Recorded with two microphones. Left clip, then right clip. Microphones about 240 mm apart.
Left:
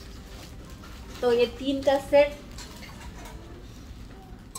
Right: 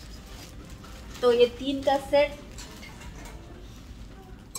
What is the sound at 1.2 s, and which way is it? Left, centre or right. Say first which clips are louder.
Speech: right 2 dB; centre.